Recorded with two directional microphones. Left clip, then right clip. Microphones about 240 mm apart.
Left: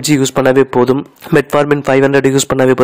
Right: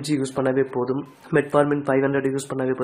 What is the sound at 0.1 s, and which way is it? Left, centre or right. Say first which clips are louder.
Speech: left 12 dB; left.